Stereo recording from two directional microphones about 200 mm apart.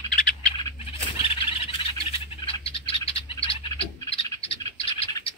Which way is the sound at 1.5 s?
25° left (ahead or behind).